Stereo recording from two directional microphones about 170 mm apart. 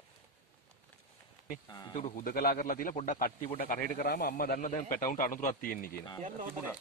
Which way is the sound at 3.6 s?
60° left (ahead or behind).